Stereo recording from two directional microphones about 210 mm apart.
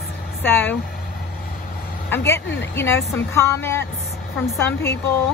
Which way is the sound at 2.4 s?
60° left (ahead or behind).